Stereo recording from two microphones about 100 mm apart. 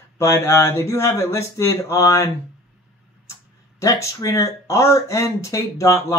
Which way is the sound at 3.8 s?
30° left (ahead or behind).